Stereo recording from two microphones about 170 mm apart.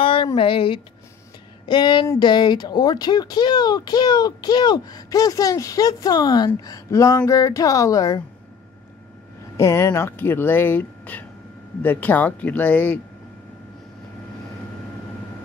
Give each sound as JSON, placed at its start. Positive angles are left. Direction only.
{"t": 0.0, "sound": "speech", "side_deg": 30}
{"t": 9.6, "sound": "speech", "side_deg": 15}